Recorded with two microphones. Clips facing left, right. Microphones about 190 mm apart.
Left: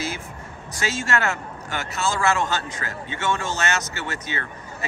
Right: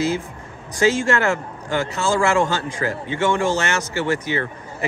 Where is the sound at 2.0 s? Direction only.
15° right (ahead or behind).